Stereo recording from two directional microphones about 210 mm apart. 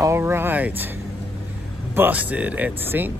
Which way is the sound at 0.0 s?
10° right (ahead or behind).